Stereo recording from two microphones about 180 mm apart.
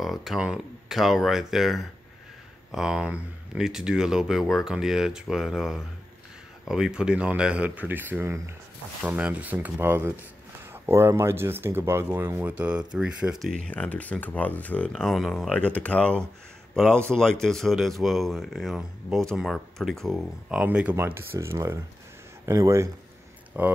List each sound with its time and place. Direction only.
0.0 s a man's voice: centre (ahead or behind)